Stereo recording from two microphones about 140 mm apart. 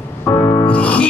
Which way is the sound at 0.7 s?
10° left (ahead or behind).